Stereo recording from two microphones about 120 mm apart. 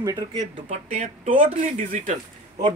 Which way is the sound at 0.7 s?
70° right (ahead or behind).